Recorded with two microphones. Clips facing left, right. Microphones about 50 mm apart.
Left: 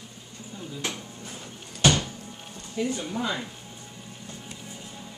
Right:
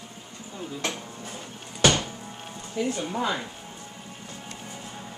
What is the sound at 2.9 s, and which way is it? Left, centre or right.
Speech, centre.